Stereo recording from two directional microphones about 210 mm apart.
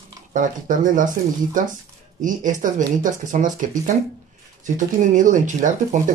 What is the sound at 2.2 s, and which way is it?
Speech, 40° right (ahead or behind).